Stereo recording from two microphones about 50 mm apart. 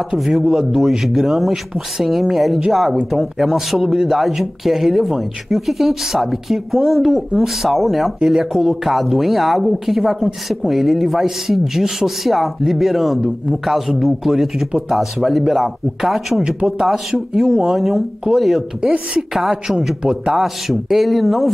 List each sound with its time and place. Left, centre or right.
0.2 s speech: centre
17.6 s speech: centre
18.8 s a woman's voice: right
19.3 s speech: centre